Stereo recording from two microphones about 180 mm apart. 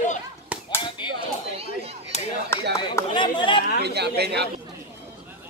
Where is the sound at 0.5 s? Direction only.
5° right (ahead or behind).